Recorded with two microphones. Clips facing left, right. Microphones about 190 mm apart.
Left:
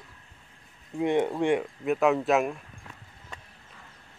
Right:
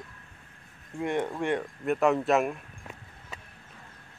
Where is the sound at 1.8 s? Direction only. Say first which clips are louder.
Right 3 dB; centre (ahead or behind).